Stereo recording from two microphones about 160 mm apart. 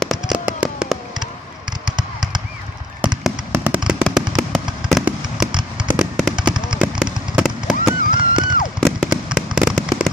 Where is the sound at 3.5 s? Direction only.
10° right (ahead or behind).